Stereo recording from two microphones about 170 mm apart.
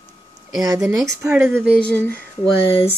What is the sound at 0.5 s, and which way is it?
Speech, 20° right (ahead or behind).